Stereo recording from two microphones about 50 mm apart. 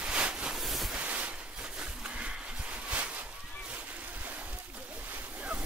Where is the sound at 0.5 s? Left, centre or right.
Centre.